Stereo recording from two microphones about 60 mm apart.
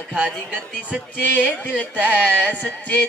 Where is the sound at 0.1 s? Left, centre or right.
Centre.